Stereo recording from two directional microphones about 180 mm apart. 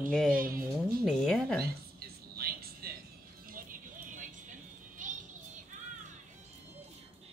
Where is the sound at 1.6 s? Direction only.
55° right (ahead or behind).